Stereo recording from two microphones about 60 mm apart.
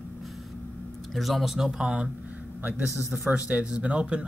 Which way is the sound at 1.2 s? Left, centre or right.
Centre.